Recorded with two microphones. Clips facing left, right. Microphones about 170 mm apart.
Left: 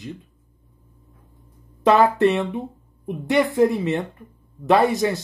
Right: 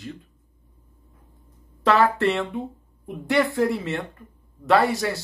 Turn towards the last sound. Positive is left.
turn(degrees=20)  # may be behind; listen again after turning